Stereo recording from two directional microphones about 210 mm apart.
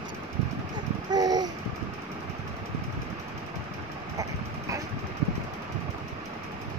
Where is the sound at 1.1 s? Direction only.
20° right (ahead or behind).